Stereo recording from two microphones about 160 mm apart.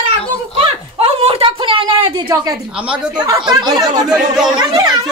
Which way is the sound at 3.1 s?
25° right (ahead or behind).